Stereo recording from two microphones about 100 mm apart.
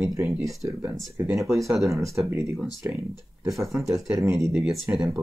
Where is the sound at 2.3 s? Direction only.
25° right (ahead or behind).